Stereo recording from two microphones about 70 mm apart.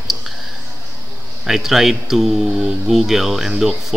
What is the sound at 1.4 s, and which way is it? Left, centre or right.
Speech, centre.